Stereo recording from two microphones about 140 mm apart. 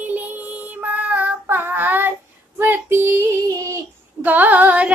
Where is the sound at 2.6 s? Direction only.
15° right (ahead or behind).